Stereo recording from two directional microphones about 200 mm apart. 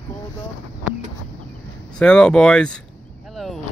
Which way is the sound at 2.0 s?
5° left (ahead or behind).